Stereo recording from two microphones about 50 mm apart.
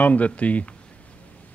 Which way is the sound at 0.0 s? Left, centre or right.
Left.